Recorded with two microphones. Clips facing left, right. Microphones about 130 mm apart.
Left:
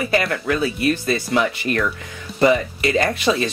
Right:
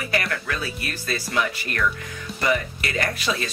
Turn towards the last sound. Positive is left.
turn(degrees=25)  # may be behind; listen again after turning